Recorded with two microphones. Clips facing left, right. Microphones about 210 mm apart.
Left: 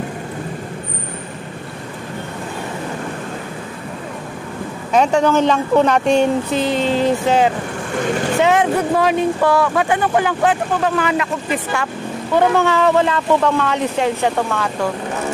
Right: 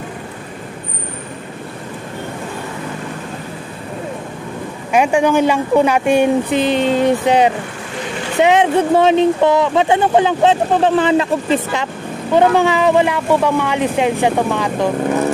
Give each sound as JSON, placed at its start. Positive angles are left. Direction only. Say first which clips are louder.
{"t": 4.9, "sound": "speech", "louder": "right 1 dB", "side_deg": -10}